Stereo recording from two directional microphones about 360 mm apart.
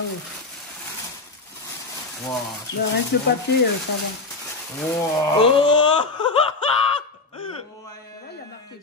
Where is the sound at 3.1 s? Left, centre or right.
Left.